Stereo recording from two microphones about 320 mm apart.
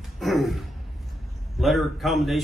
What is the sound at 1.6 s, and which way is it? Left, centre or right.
Speech, centre.